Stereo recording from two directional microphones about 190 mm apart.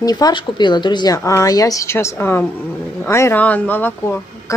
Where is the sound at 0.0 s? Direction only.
20° left (ahead or behind).